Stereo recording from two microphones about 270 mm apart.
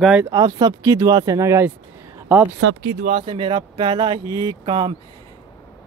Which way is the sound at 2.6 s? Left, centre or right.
Right.